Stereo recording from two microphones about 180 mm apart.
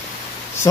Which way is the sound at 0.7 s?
15° left (ahead or behind).